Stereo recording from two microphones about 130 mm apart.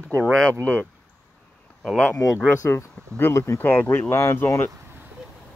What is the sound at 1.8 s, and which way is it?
Speech, 5° left (ahead or behind).